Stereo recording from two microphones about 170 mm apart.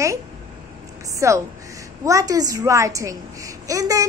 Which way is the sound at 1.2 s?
15° right (ahead or behind).